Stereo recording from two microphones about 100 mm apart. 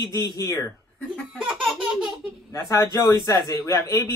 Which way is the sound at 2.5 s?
35° left (ahead or behind).